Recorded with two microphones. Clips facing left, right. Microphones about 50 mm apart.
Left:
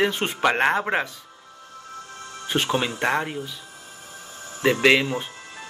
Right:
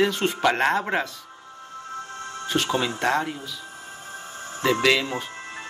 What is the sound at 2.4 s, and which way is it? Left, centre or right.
Speech, left.